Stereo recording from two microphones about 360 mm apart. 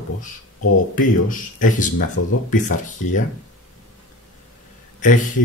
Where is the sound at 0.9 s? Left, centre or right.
Left.